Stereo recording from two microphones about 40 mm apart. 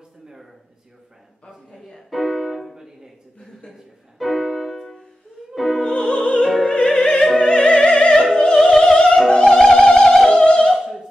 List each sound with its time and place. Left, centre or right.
2.0 s music: centre
4.2 s music: centre
6.7 s opera: left
7.3 s opera: centre
9.3 s music: left
10.7 s singing: centre